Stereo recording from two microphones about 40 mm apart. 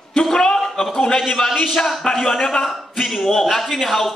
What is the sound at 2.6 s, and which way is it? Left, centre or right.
A man's voice, centre.